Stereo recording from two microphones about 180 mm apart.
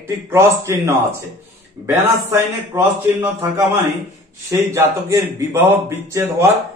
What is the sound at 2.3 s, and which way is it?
Speech, 15° right (ahead or behind).